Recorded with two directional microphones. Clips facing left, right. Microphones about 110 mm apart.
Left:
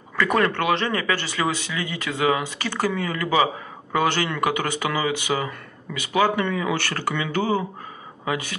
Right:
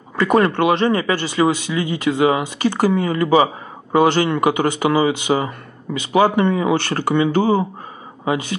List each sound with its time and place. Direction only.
0.1 s speech: 25° right (ahead or behind)